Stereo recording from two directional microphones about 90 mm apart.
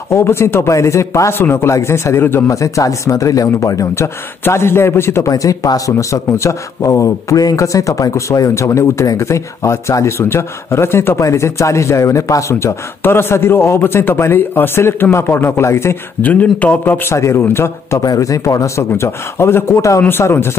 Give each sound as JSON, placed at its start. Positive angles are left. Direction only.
{"t": 0.1, "sound": "a man's voice", "side_deg": 30}
{"t": 5.3, "sound": "a man's voice", "side_deg": 40}
{"t": 16.2, "sound": "speech", "side_deg": 15}
{"t": 17.1, "sound": "a man's voice", "side_deg": 30}
{"t": 18.0, "sound": "a man's voice", "side_deg": 45}